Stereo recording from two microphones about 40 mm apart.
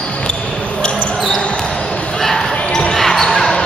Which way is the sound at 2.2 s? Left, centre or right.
Centre.